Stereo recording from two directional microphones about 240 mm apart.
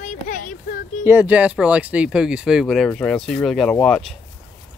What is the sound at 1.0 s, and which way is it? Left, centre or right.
Speech, centre.